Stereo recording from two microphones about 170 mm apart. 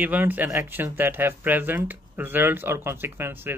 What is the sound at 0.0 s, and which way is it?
Speech, 10° right (ahead or behind).